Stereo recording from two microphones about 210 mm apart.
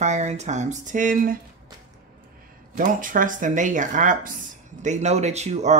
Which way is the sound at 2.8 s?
40° right (ahead or behind).